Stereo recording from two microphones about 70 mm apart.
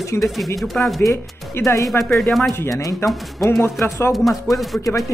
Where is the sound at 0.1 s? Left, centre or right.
Left.